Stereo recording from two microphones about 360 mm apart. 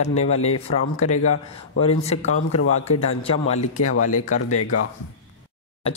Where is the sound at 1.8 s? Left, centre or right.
Centre.